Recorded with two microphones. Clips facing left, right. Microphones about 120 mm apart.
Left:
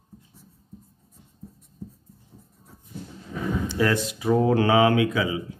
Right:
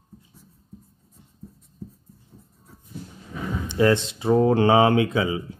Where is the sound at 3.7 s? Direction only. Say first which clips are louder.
Right 6 dB; 25° right (ahead or behind).